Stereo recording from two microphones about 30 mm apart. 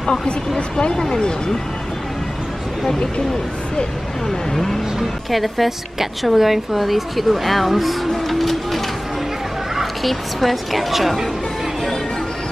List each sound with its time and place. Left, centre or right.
0.0 s speech: left
0.9 s speech: centre
5.3 s speech: centre
8.3 s printer: centre
9.8 s speech: centre